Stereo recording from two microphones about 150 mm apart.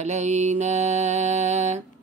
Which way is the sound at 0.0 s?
50° right (ahead or behind).